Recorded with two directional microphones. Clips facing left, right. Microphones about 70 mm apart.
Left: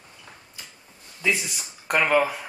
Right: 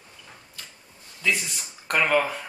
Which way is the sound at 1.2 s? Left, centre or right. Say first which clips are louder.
Left 1 dB; centre.